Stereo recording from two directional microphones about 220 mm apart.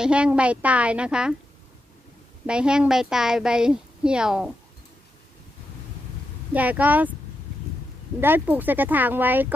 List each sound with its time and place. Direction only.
0.0 s a woman's voice: 5° right (ahead or behind)
2.4 s a woman's voice: 5° right (ahead or behind)
6.5 s speech: 5° right (ahead or behind)
8.2 s speech: 10° right (ahead or behind)